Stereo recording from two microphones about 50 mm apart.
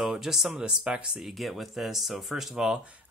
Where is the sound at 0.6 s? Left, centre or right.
Centre.